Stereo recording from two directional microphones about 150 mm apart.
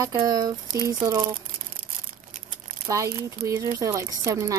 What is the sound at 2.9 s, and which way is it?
Speech, 20° right (ahead or behind).